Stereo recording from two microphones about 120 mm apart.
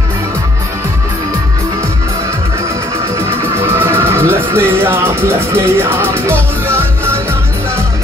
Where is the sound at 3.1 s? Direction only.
20° right (ahead or behind).